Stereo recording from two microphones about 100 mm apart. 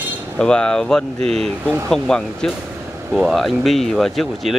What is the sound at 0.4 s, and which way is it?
Speech, 10° left (ahead or behind).